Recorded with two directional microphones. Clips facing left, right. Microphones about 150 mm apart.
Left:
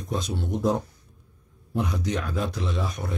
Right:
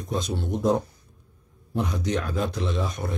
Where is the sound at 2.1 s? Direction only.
Centre (ahead or behind).